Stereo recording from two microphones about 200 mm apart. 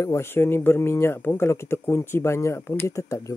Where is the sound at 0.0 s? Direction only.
15° left (ahead or behind).